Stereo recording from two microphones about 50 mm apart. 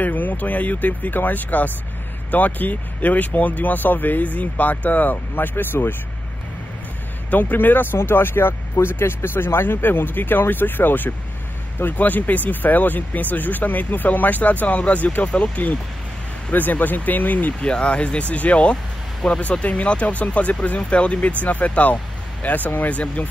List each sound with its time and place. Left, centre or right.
0.0 s speech: left
7.2 s speech: left
17.6 s speech: left